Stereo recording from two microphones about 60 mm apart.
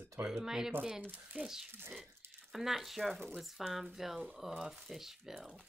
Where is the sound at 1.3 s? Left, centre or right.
Centre.